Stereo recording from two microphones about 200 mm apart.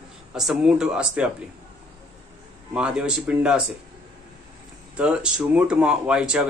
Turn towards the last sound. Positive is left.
turn(degrees=-5)  # may be behind; listen again after turning